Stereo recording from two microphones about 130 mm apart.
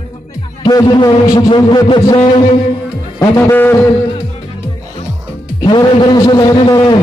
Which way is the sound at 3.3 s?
15° left (ahead or behind).